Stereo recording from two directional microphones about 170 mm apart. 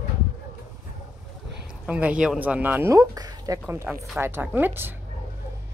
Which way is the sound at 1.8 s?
10° right (ahead or behind).